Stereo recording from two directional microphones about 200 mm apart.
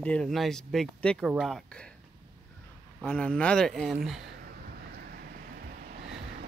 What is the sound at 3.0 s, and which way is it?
Speech, 5° left (ahead or behind).